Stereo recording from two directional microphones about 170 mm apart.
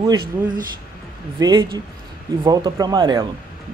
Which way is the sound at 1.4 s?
25° right (ahead or behind).